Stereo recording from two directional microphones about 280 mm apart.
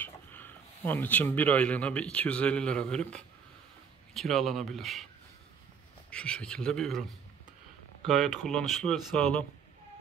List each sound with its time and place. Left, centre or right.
0.0 s speech: centre
6.0 s speech: centre